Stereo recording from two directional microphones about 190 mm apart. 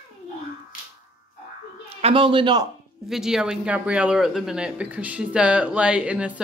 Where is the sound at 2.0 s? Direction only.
25° right (ahead or behind).